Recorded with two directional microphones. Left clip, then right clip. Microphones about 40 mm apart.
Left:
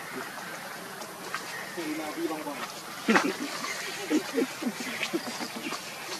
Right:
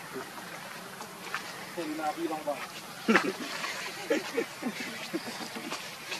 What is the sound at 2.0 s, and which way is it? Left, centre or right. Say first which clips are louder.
Speech: right 4 dB; centre.